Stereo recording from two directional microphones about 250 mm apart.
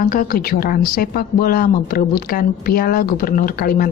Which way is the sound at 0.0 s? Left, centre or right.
Left.